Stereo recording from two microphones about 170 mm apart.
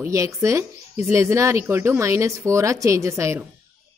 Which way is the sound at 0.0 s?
15° right (ahead or behind).